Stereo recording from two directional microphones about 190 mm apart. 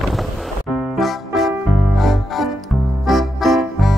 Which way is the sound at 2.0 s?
Centre (ahead or behind).